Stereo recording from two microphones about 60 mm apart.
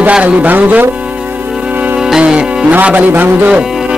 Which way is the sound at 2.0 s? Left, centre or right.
Centre.